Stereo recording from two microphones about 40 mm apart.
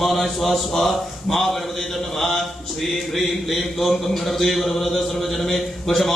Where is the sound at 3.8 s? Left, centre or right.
Centre.